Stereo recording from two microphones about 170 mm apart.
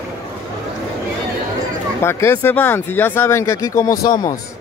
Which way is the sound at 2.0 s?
15° left (ahead or behind).